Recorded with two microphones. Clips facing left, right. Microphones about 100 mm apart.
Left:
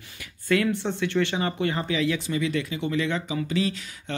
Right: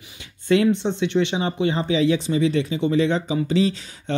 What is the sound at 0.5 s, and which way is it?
Speech, 20° right (ahead or behind).